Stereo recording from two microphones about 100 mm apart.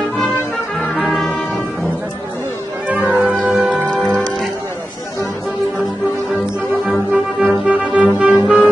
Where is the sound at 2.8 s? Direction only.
15° right (ahead or behind).